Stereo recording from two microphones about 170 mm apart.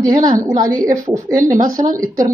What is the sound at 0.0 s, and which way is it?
Speech, 20° right (ahead or behind).